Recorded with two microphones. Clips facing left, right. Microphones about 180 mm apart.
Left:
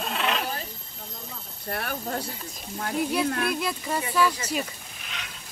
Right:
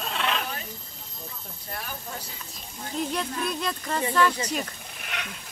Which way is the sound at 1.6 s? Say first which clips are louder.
Left 7 dB; 60° left (ahead or behind).